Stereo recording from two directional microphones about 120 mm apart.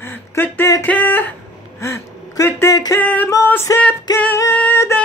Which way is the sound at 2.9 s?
15° left (ahead or behind).